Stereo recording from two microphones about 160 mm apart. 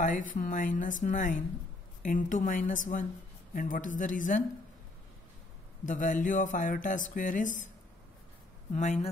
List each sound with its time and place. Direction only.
0.0 s speech: 55° left (ahead or behind)
5.9 s speech: 50° left (ahead or behind)
8.7 s speech: 45° left (ahead or behind)